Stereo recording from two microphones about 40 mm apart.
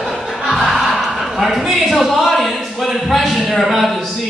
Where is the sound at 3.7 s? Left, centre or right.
Centre.